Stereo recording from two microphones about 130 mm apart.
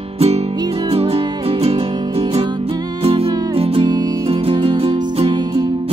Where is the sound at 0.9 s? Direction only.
50° right (ahead or behind).